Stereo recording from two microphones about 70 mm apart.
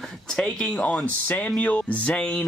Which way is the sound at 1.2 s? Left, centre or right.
Left.